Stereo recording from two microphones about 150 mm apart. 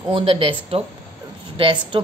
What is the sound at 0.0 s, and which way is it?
A woman's voice, 40° right (ahead or behind).